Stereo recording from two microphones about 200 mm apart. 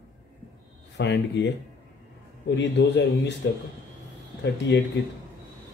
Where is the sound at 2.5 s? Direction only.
60° left (ahead or behind).